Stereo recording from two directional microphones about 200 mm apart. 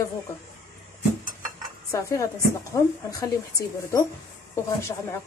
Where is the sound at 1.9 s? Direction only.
15° left (ahead or behind).